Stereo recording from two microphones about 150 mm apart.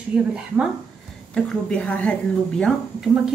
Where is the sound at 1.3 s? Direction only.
5° left (ahead or behind).